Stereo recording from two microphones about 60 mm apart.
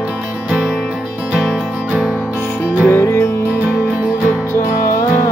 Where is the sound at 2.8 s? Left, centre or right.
Left.